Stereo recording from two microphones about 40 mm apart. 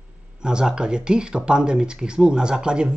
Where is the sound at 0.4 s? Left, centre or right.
Right.